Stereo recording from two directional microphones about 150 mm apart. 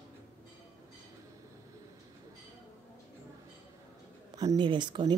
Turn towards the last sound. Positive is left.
turn(degrees=-30)  # may be behind; listen again after turning